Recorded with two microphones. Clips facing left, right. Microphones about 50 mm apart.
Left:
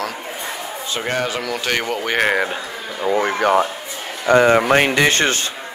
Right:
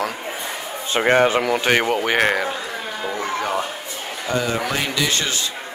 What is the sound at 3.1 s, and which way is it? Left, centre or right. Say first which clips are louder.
Speech: left 8 dB; left.